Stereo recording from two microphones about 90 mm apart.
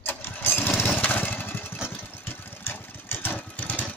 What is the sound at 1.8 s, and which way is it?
Engine, 25° left (ahead or behind).